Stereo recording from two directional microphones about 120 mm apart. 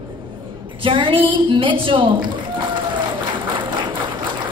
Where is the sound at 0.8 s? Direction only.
45° right (ahead or behind).